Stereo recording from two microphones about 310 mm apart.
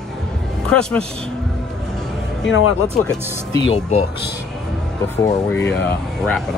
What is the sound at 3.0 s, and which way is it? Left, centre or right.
Speech, centre.